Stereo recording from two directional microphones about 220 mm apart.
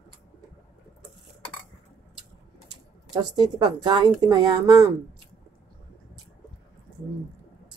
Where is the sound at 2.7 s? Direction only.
20° right (ahead or behind).